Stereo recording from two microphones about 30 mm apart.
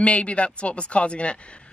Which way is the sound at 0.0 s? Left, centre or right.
Left.